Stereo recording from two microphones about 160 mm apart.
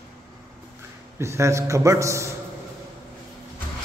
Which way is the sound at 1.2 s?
15° right (ahead or behind).